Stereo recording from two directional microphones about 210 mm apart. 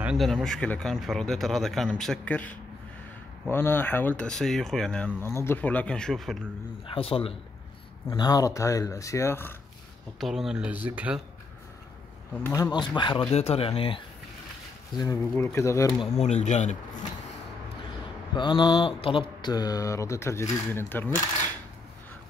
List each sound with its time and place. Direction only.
0.0 s speech: centre (ahead or behind)
6.9 s speech: 25° left (ahead or behind); by 9.6 s 10° left (ahead or behind)
10.2 s speech: centre (ahead or behind)
12.4 s speech: 10° left (ahead or behind)
12.7 s speech: 20° left (ahead or behind)
15.0 s speech: 15° left (ahead or behind)
16.2 s speech: 35° left (ahead or behind)
18.3 s speech: 20° left (ahead or behind)